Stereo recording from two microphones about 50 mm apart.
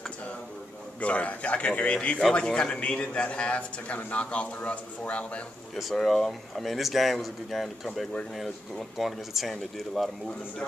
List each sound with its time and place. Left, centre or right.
1.0 s a man's voice: left
5.9 s speech: centre